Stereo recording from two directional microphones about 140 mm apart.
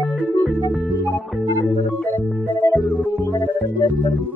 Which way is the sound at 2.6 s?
15° left (ahead or behind).